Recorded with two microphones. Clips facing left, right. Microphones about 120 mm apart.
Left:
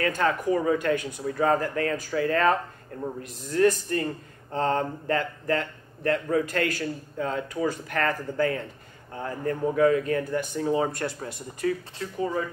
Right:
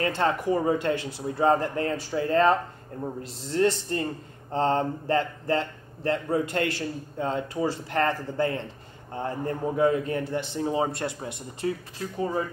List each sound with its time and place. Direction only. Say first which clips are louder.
0.0 s speech: even; 25° right (ahead or behind)